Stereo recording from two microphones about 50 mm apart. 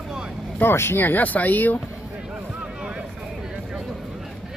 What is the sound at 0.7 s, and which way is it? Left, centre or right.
Speech, left.